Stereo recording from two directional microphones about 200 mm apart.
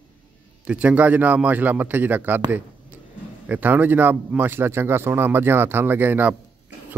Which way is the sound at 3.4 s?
10° right (ahead or behind).